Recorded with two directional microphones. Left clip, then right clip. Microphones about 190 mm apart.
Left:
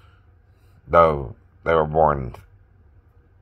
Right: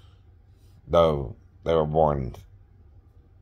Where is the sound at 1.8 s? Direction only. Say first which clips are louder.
Left 3 dB; 15° left (ahead or behind).